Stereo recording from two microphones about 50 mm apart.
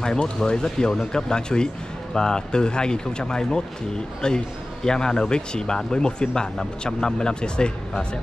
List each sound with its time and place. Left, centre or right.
0.0 s speech: centre